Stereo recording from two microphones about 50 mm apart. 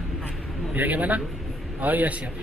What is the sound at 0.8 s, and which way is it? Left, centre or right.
Speech, right.